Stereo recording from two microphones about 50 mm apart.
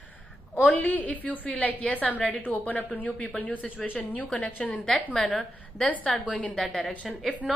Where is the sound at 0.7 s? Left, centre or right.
Left.